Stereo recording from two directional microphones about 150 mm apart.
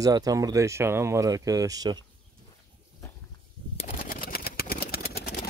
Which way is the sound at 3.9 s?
65° left (ahead or behind).